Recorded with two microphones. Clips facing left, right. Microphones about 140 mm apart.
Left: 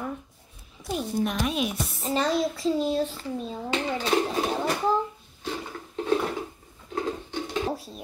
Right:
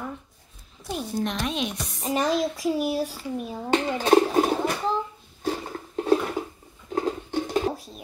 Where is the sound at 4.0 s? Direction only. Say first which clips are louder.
Right 8 dB; 50° right (ahead or behind).